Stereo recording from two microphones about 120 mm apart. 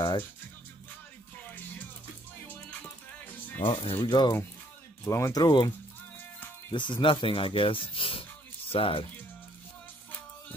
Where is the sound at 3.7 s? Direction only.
50° left (ahead or behind).